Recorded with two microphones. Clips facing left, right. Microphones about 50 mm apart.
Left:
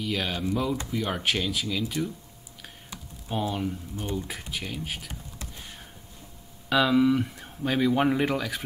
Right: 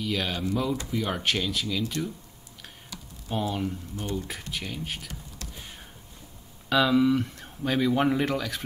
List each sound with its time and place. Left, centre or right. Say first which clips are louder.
0.0 s speech: even; centre
3.3 s speech: even; centre
3.9 s speech: even; centre
4.3 s speech: even; centre
6.7 s speech: even; centre